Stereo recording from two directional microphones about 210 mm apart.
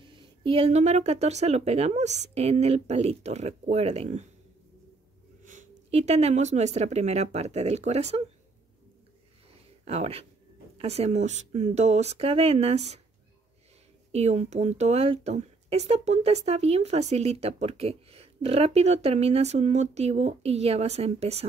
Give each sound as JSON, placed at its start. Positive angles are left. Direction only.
{"t": 0.1, "sound": "speech", "side_deg": -25}
{"t": 5.4, "sound": "speech", "side_deg": -35}
{"t": 9.8, "sound": "a woman's voice", "side_deg": -30}
{"t": 14.1, "sound": "a woman's voice", "side_deg": -30}